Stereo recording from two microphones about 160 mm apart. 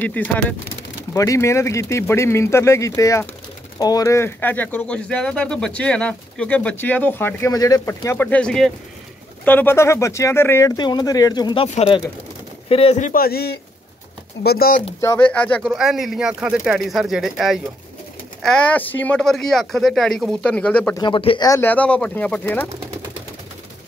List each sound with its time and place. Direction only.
0.0 s speech: 10° left (ahead or behind)
10.8 s speech: 25° left (ahead or behind); by 13.1 s 40° left (ahead or behind)
13.1 s speech: 70° left (ahead or behind)
15.0 s speech: 15° left (ahead or behind)
15.7 s speech: centre (ahead or behind)
20.9 s speech: 30° left (ahead or behind)
21.5 s speech: 15° left (ahead or behind)